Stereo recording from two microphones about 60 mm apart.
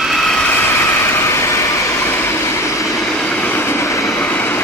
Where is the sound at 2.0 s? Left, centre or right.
Left.